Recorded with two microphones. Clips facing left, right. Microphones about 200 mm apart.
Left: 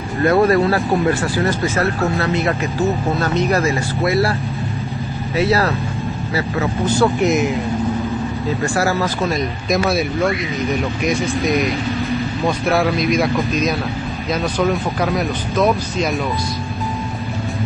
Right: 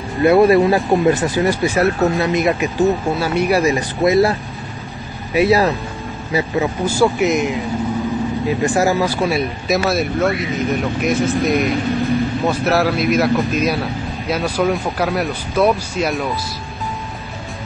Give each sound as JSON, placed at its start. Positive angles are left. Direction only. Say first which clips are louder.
{"t": 0.2, "sound": "speech", "louder": "right 3 dB", "side_deg": -15}
{"t": 8.6, "sound": "speech", "louder": "right 3 dB", "side_deg": -15}